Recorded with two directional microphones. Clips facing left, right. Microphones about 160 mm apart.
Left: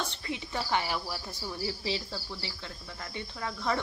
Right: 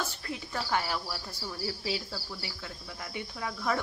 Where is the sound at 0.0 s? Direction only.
5° right (ahead or behind).